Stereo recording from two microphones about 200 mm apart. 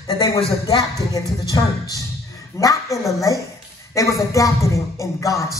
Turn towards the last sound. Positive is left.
turn(degrees=15)  # may be behind; listen again after turning